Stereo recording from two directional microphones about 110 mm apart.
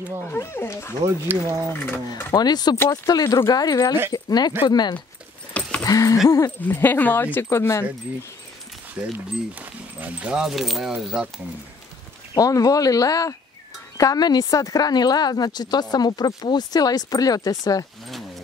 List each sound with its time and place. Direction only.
0.3 s speech: 20° left (ahead or behind)
1.0 s speech: 20° right (ahead or behind)
2.3 s speech: 40° left (ahead or behind)
5.5 s a sound: 10° left (ahead or behind)
5.8 s a sound: 30° left (ahead or behind)
6.2 s speech: 30° left (ahead or behind)
6.6 s speech: 20° left (ahead or behind)
9.0 s speech: 10° right (ahead or behind)
12.4 s speech: 35° left (ahead or behind)